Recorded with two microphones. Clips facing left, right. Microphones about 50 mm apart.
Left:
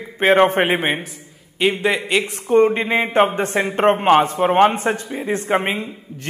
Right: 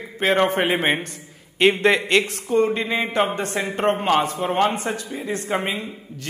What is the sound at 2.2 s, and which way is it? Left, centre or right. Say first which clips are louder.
A man's voice: left 5 dB; left.